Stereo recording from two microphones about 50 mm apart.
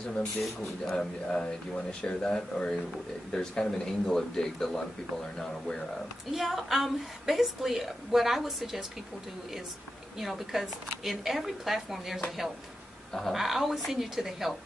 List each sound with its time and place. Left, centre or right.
0.6 s speech: centre
6.3 s a woman's voice: centre
10.1 s a woman's voice: centre
13.3 s a woman's voice: centre